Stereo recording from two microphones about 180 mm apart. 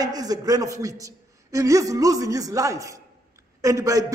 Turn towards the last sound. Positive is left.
turn(degrees=-20)  # may be behind; listen again after turning